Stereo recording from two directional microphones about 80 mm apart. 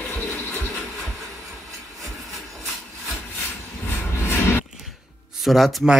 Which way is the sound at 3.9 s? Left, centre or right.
Left.